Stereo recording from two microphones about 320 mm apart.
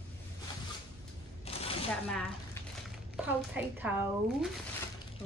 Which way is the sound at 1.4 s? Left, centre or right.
Centre.